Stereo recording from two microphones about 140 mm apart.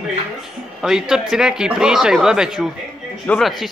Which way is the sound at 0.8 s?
5° right (ahead or behind).